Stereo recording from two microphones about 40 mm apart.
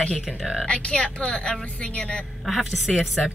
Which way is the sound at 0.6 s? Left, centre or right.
Left.